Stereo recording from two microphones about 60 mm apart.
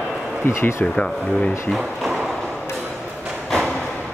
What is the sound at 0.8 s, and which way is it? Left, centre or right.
Speech, centre.